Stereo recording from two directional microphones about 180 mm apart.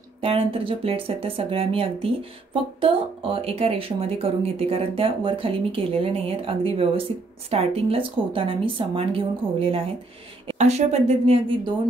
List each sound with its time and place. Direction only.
0.2 s speech: 30° right (ahead or behind)